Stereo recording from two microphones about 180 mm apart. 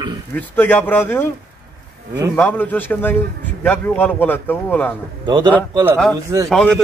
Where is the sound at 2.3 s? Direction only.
10° left (ahead or behind).